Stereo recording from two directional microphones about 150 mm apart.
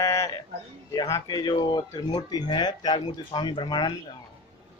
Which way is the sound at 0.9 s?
25° left (ahead or behind).